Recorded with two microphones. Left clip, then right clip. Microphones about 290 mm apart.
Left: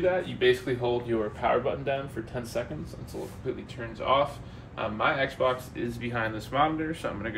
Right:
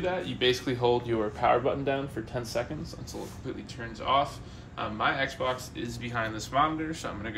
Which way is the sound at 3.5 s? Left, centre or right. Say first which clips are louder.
Left 3 dB; centre.